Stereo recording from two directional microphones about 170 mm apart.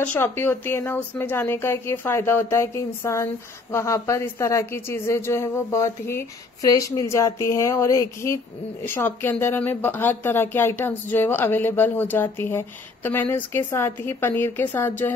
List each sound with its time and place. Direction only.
0.0 s speech: 10° left (ahead or behind)